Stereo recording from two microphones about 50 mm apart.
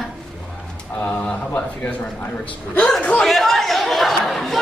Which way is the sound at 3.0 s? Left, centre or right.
Left.